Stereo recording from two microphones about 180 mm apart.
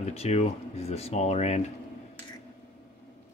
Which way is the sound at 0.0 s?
35° left (ahead or behind).